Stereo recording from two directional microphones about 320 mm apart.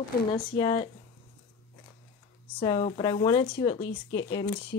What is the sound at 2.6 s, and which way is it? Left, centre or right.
Speech, centre.